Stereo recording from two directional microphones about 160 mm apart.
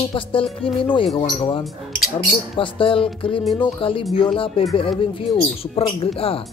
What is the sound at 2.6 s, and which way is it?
Speech, 30° left (ahead or behind).